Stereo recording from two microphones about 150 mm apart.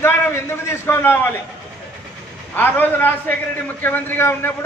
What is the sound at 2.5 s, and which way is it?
A man's voice, 10° left (ahead or behind).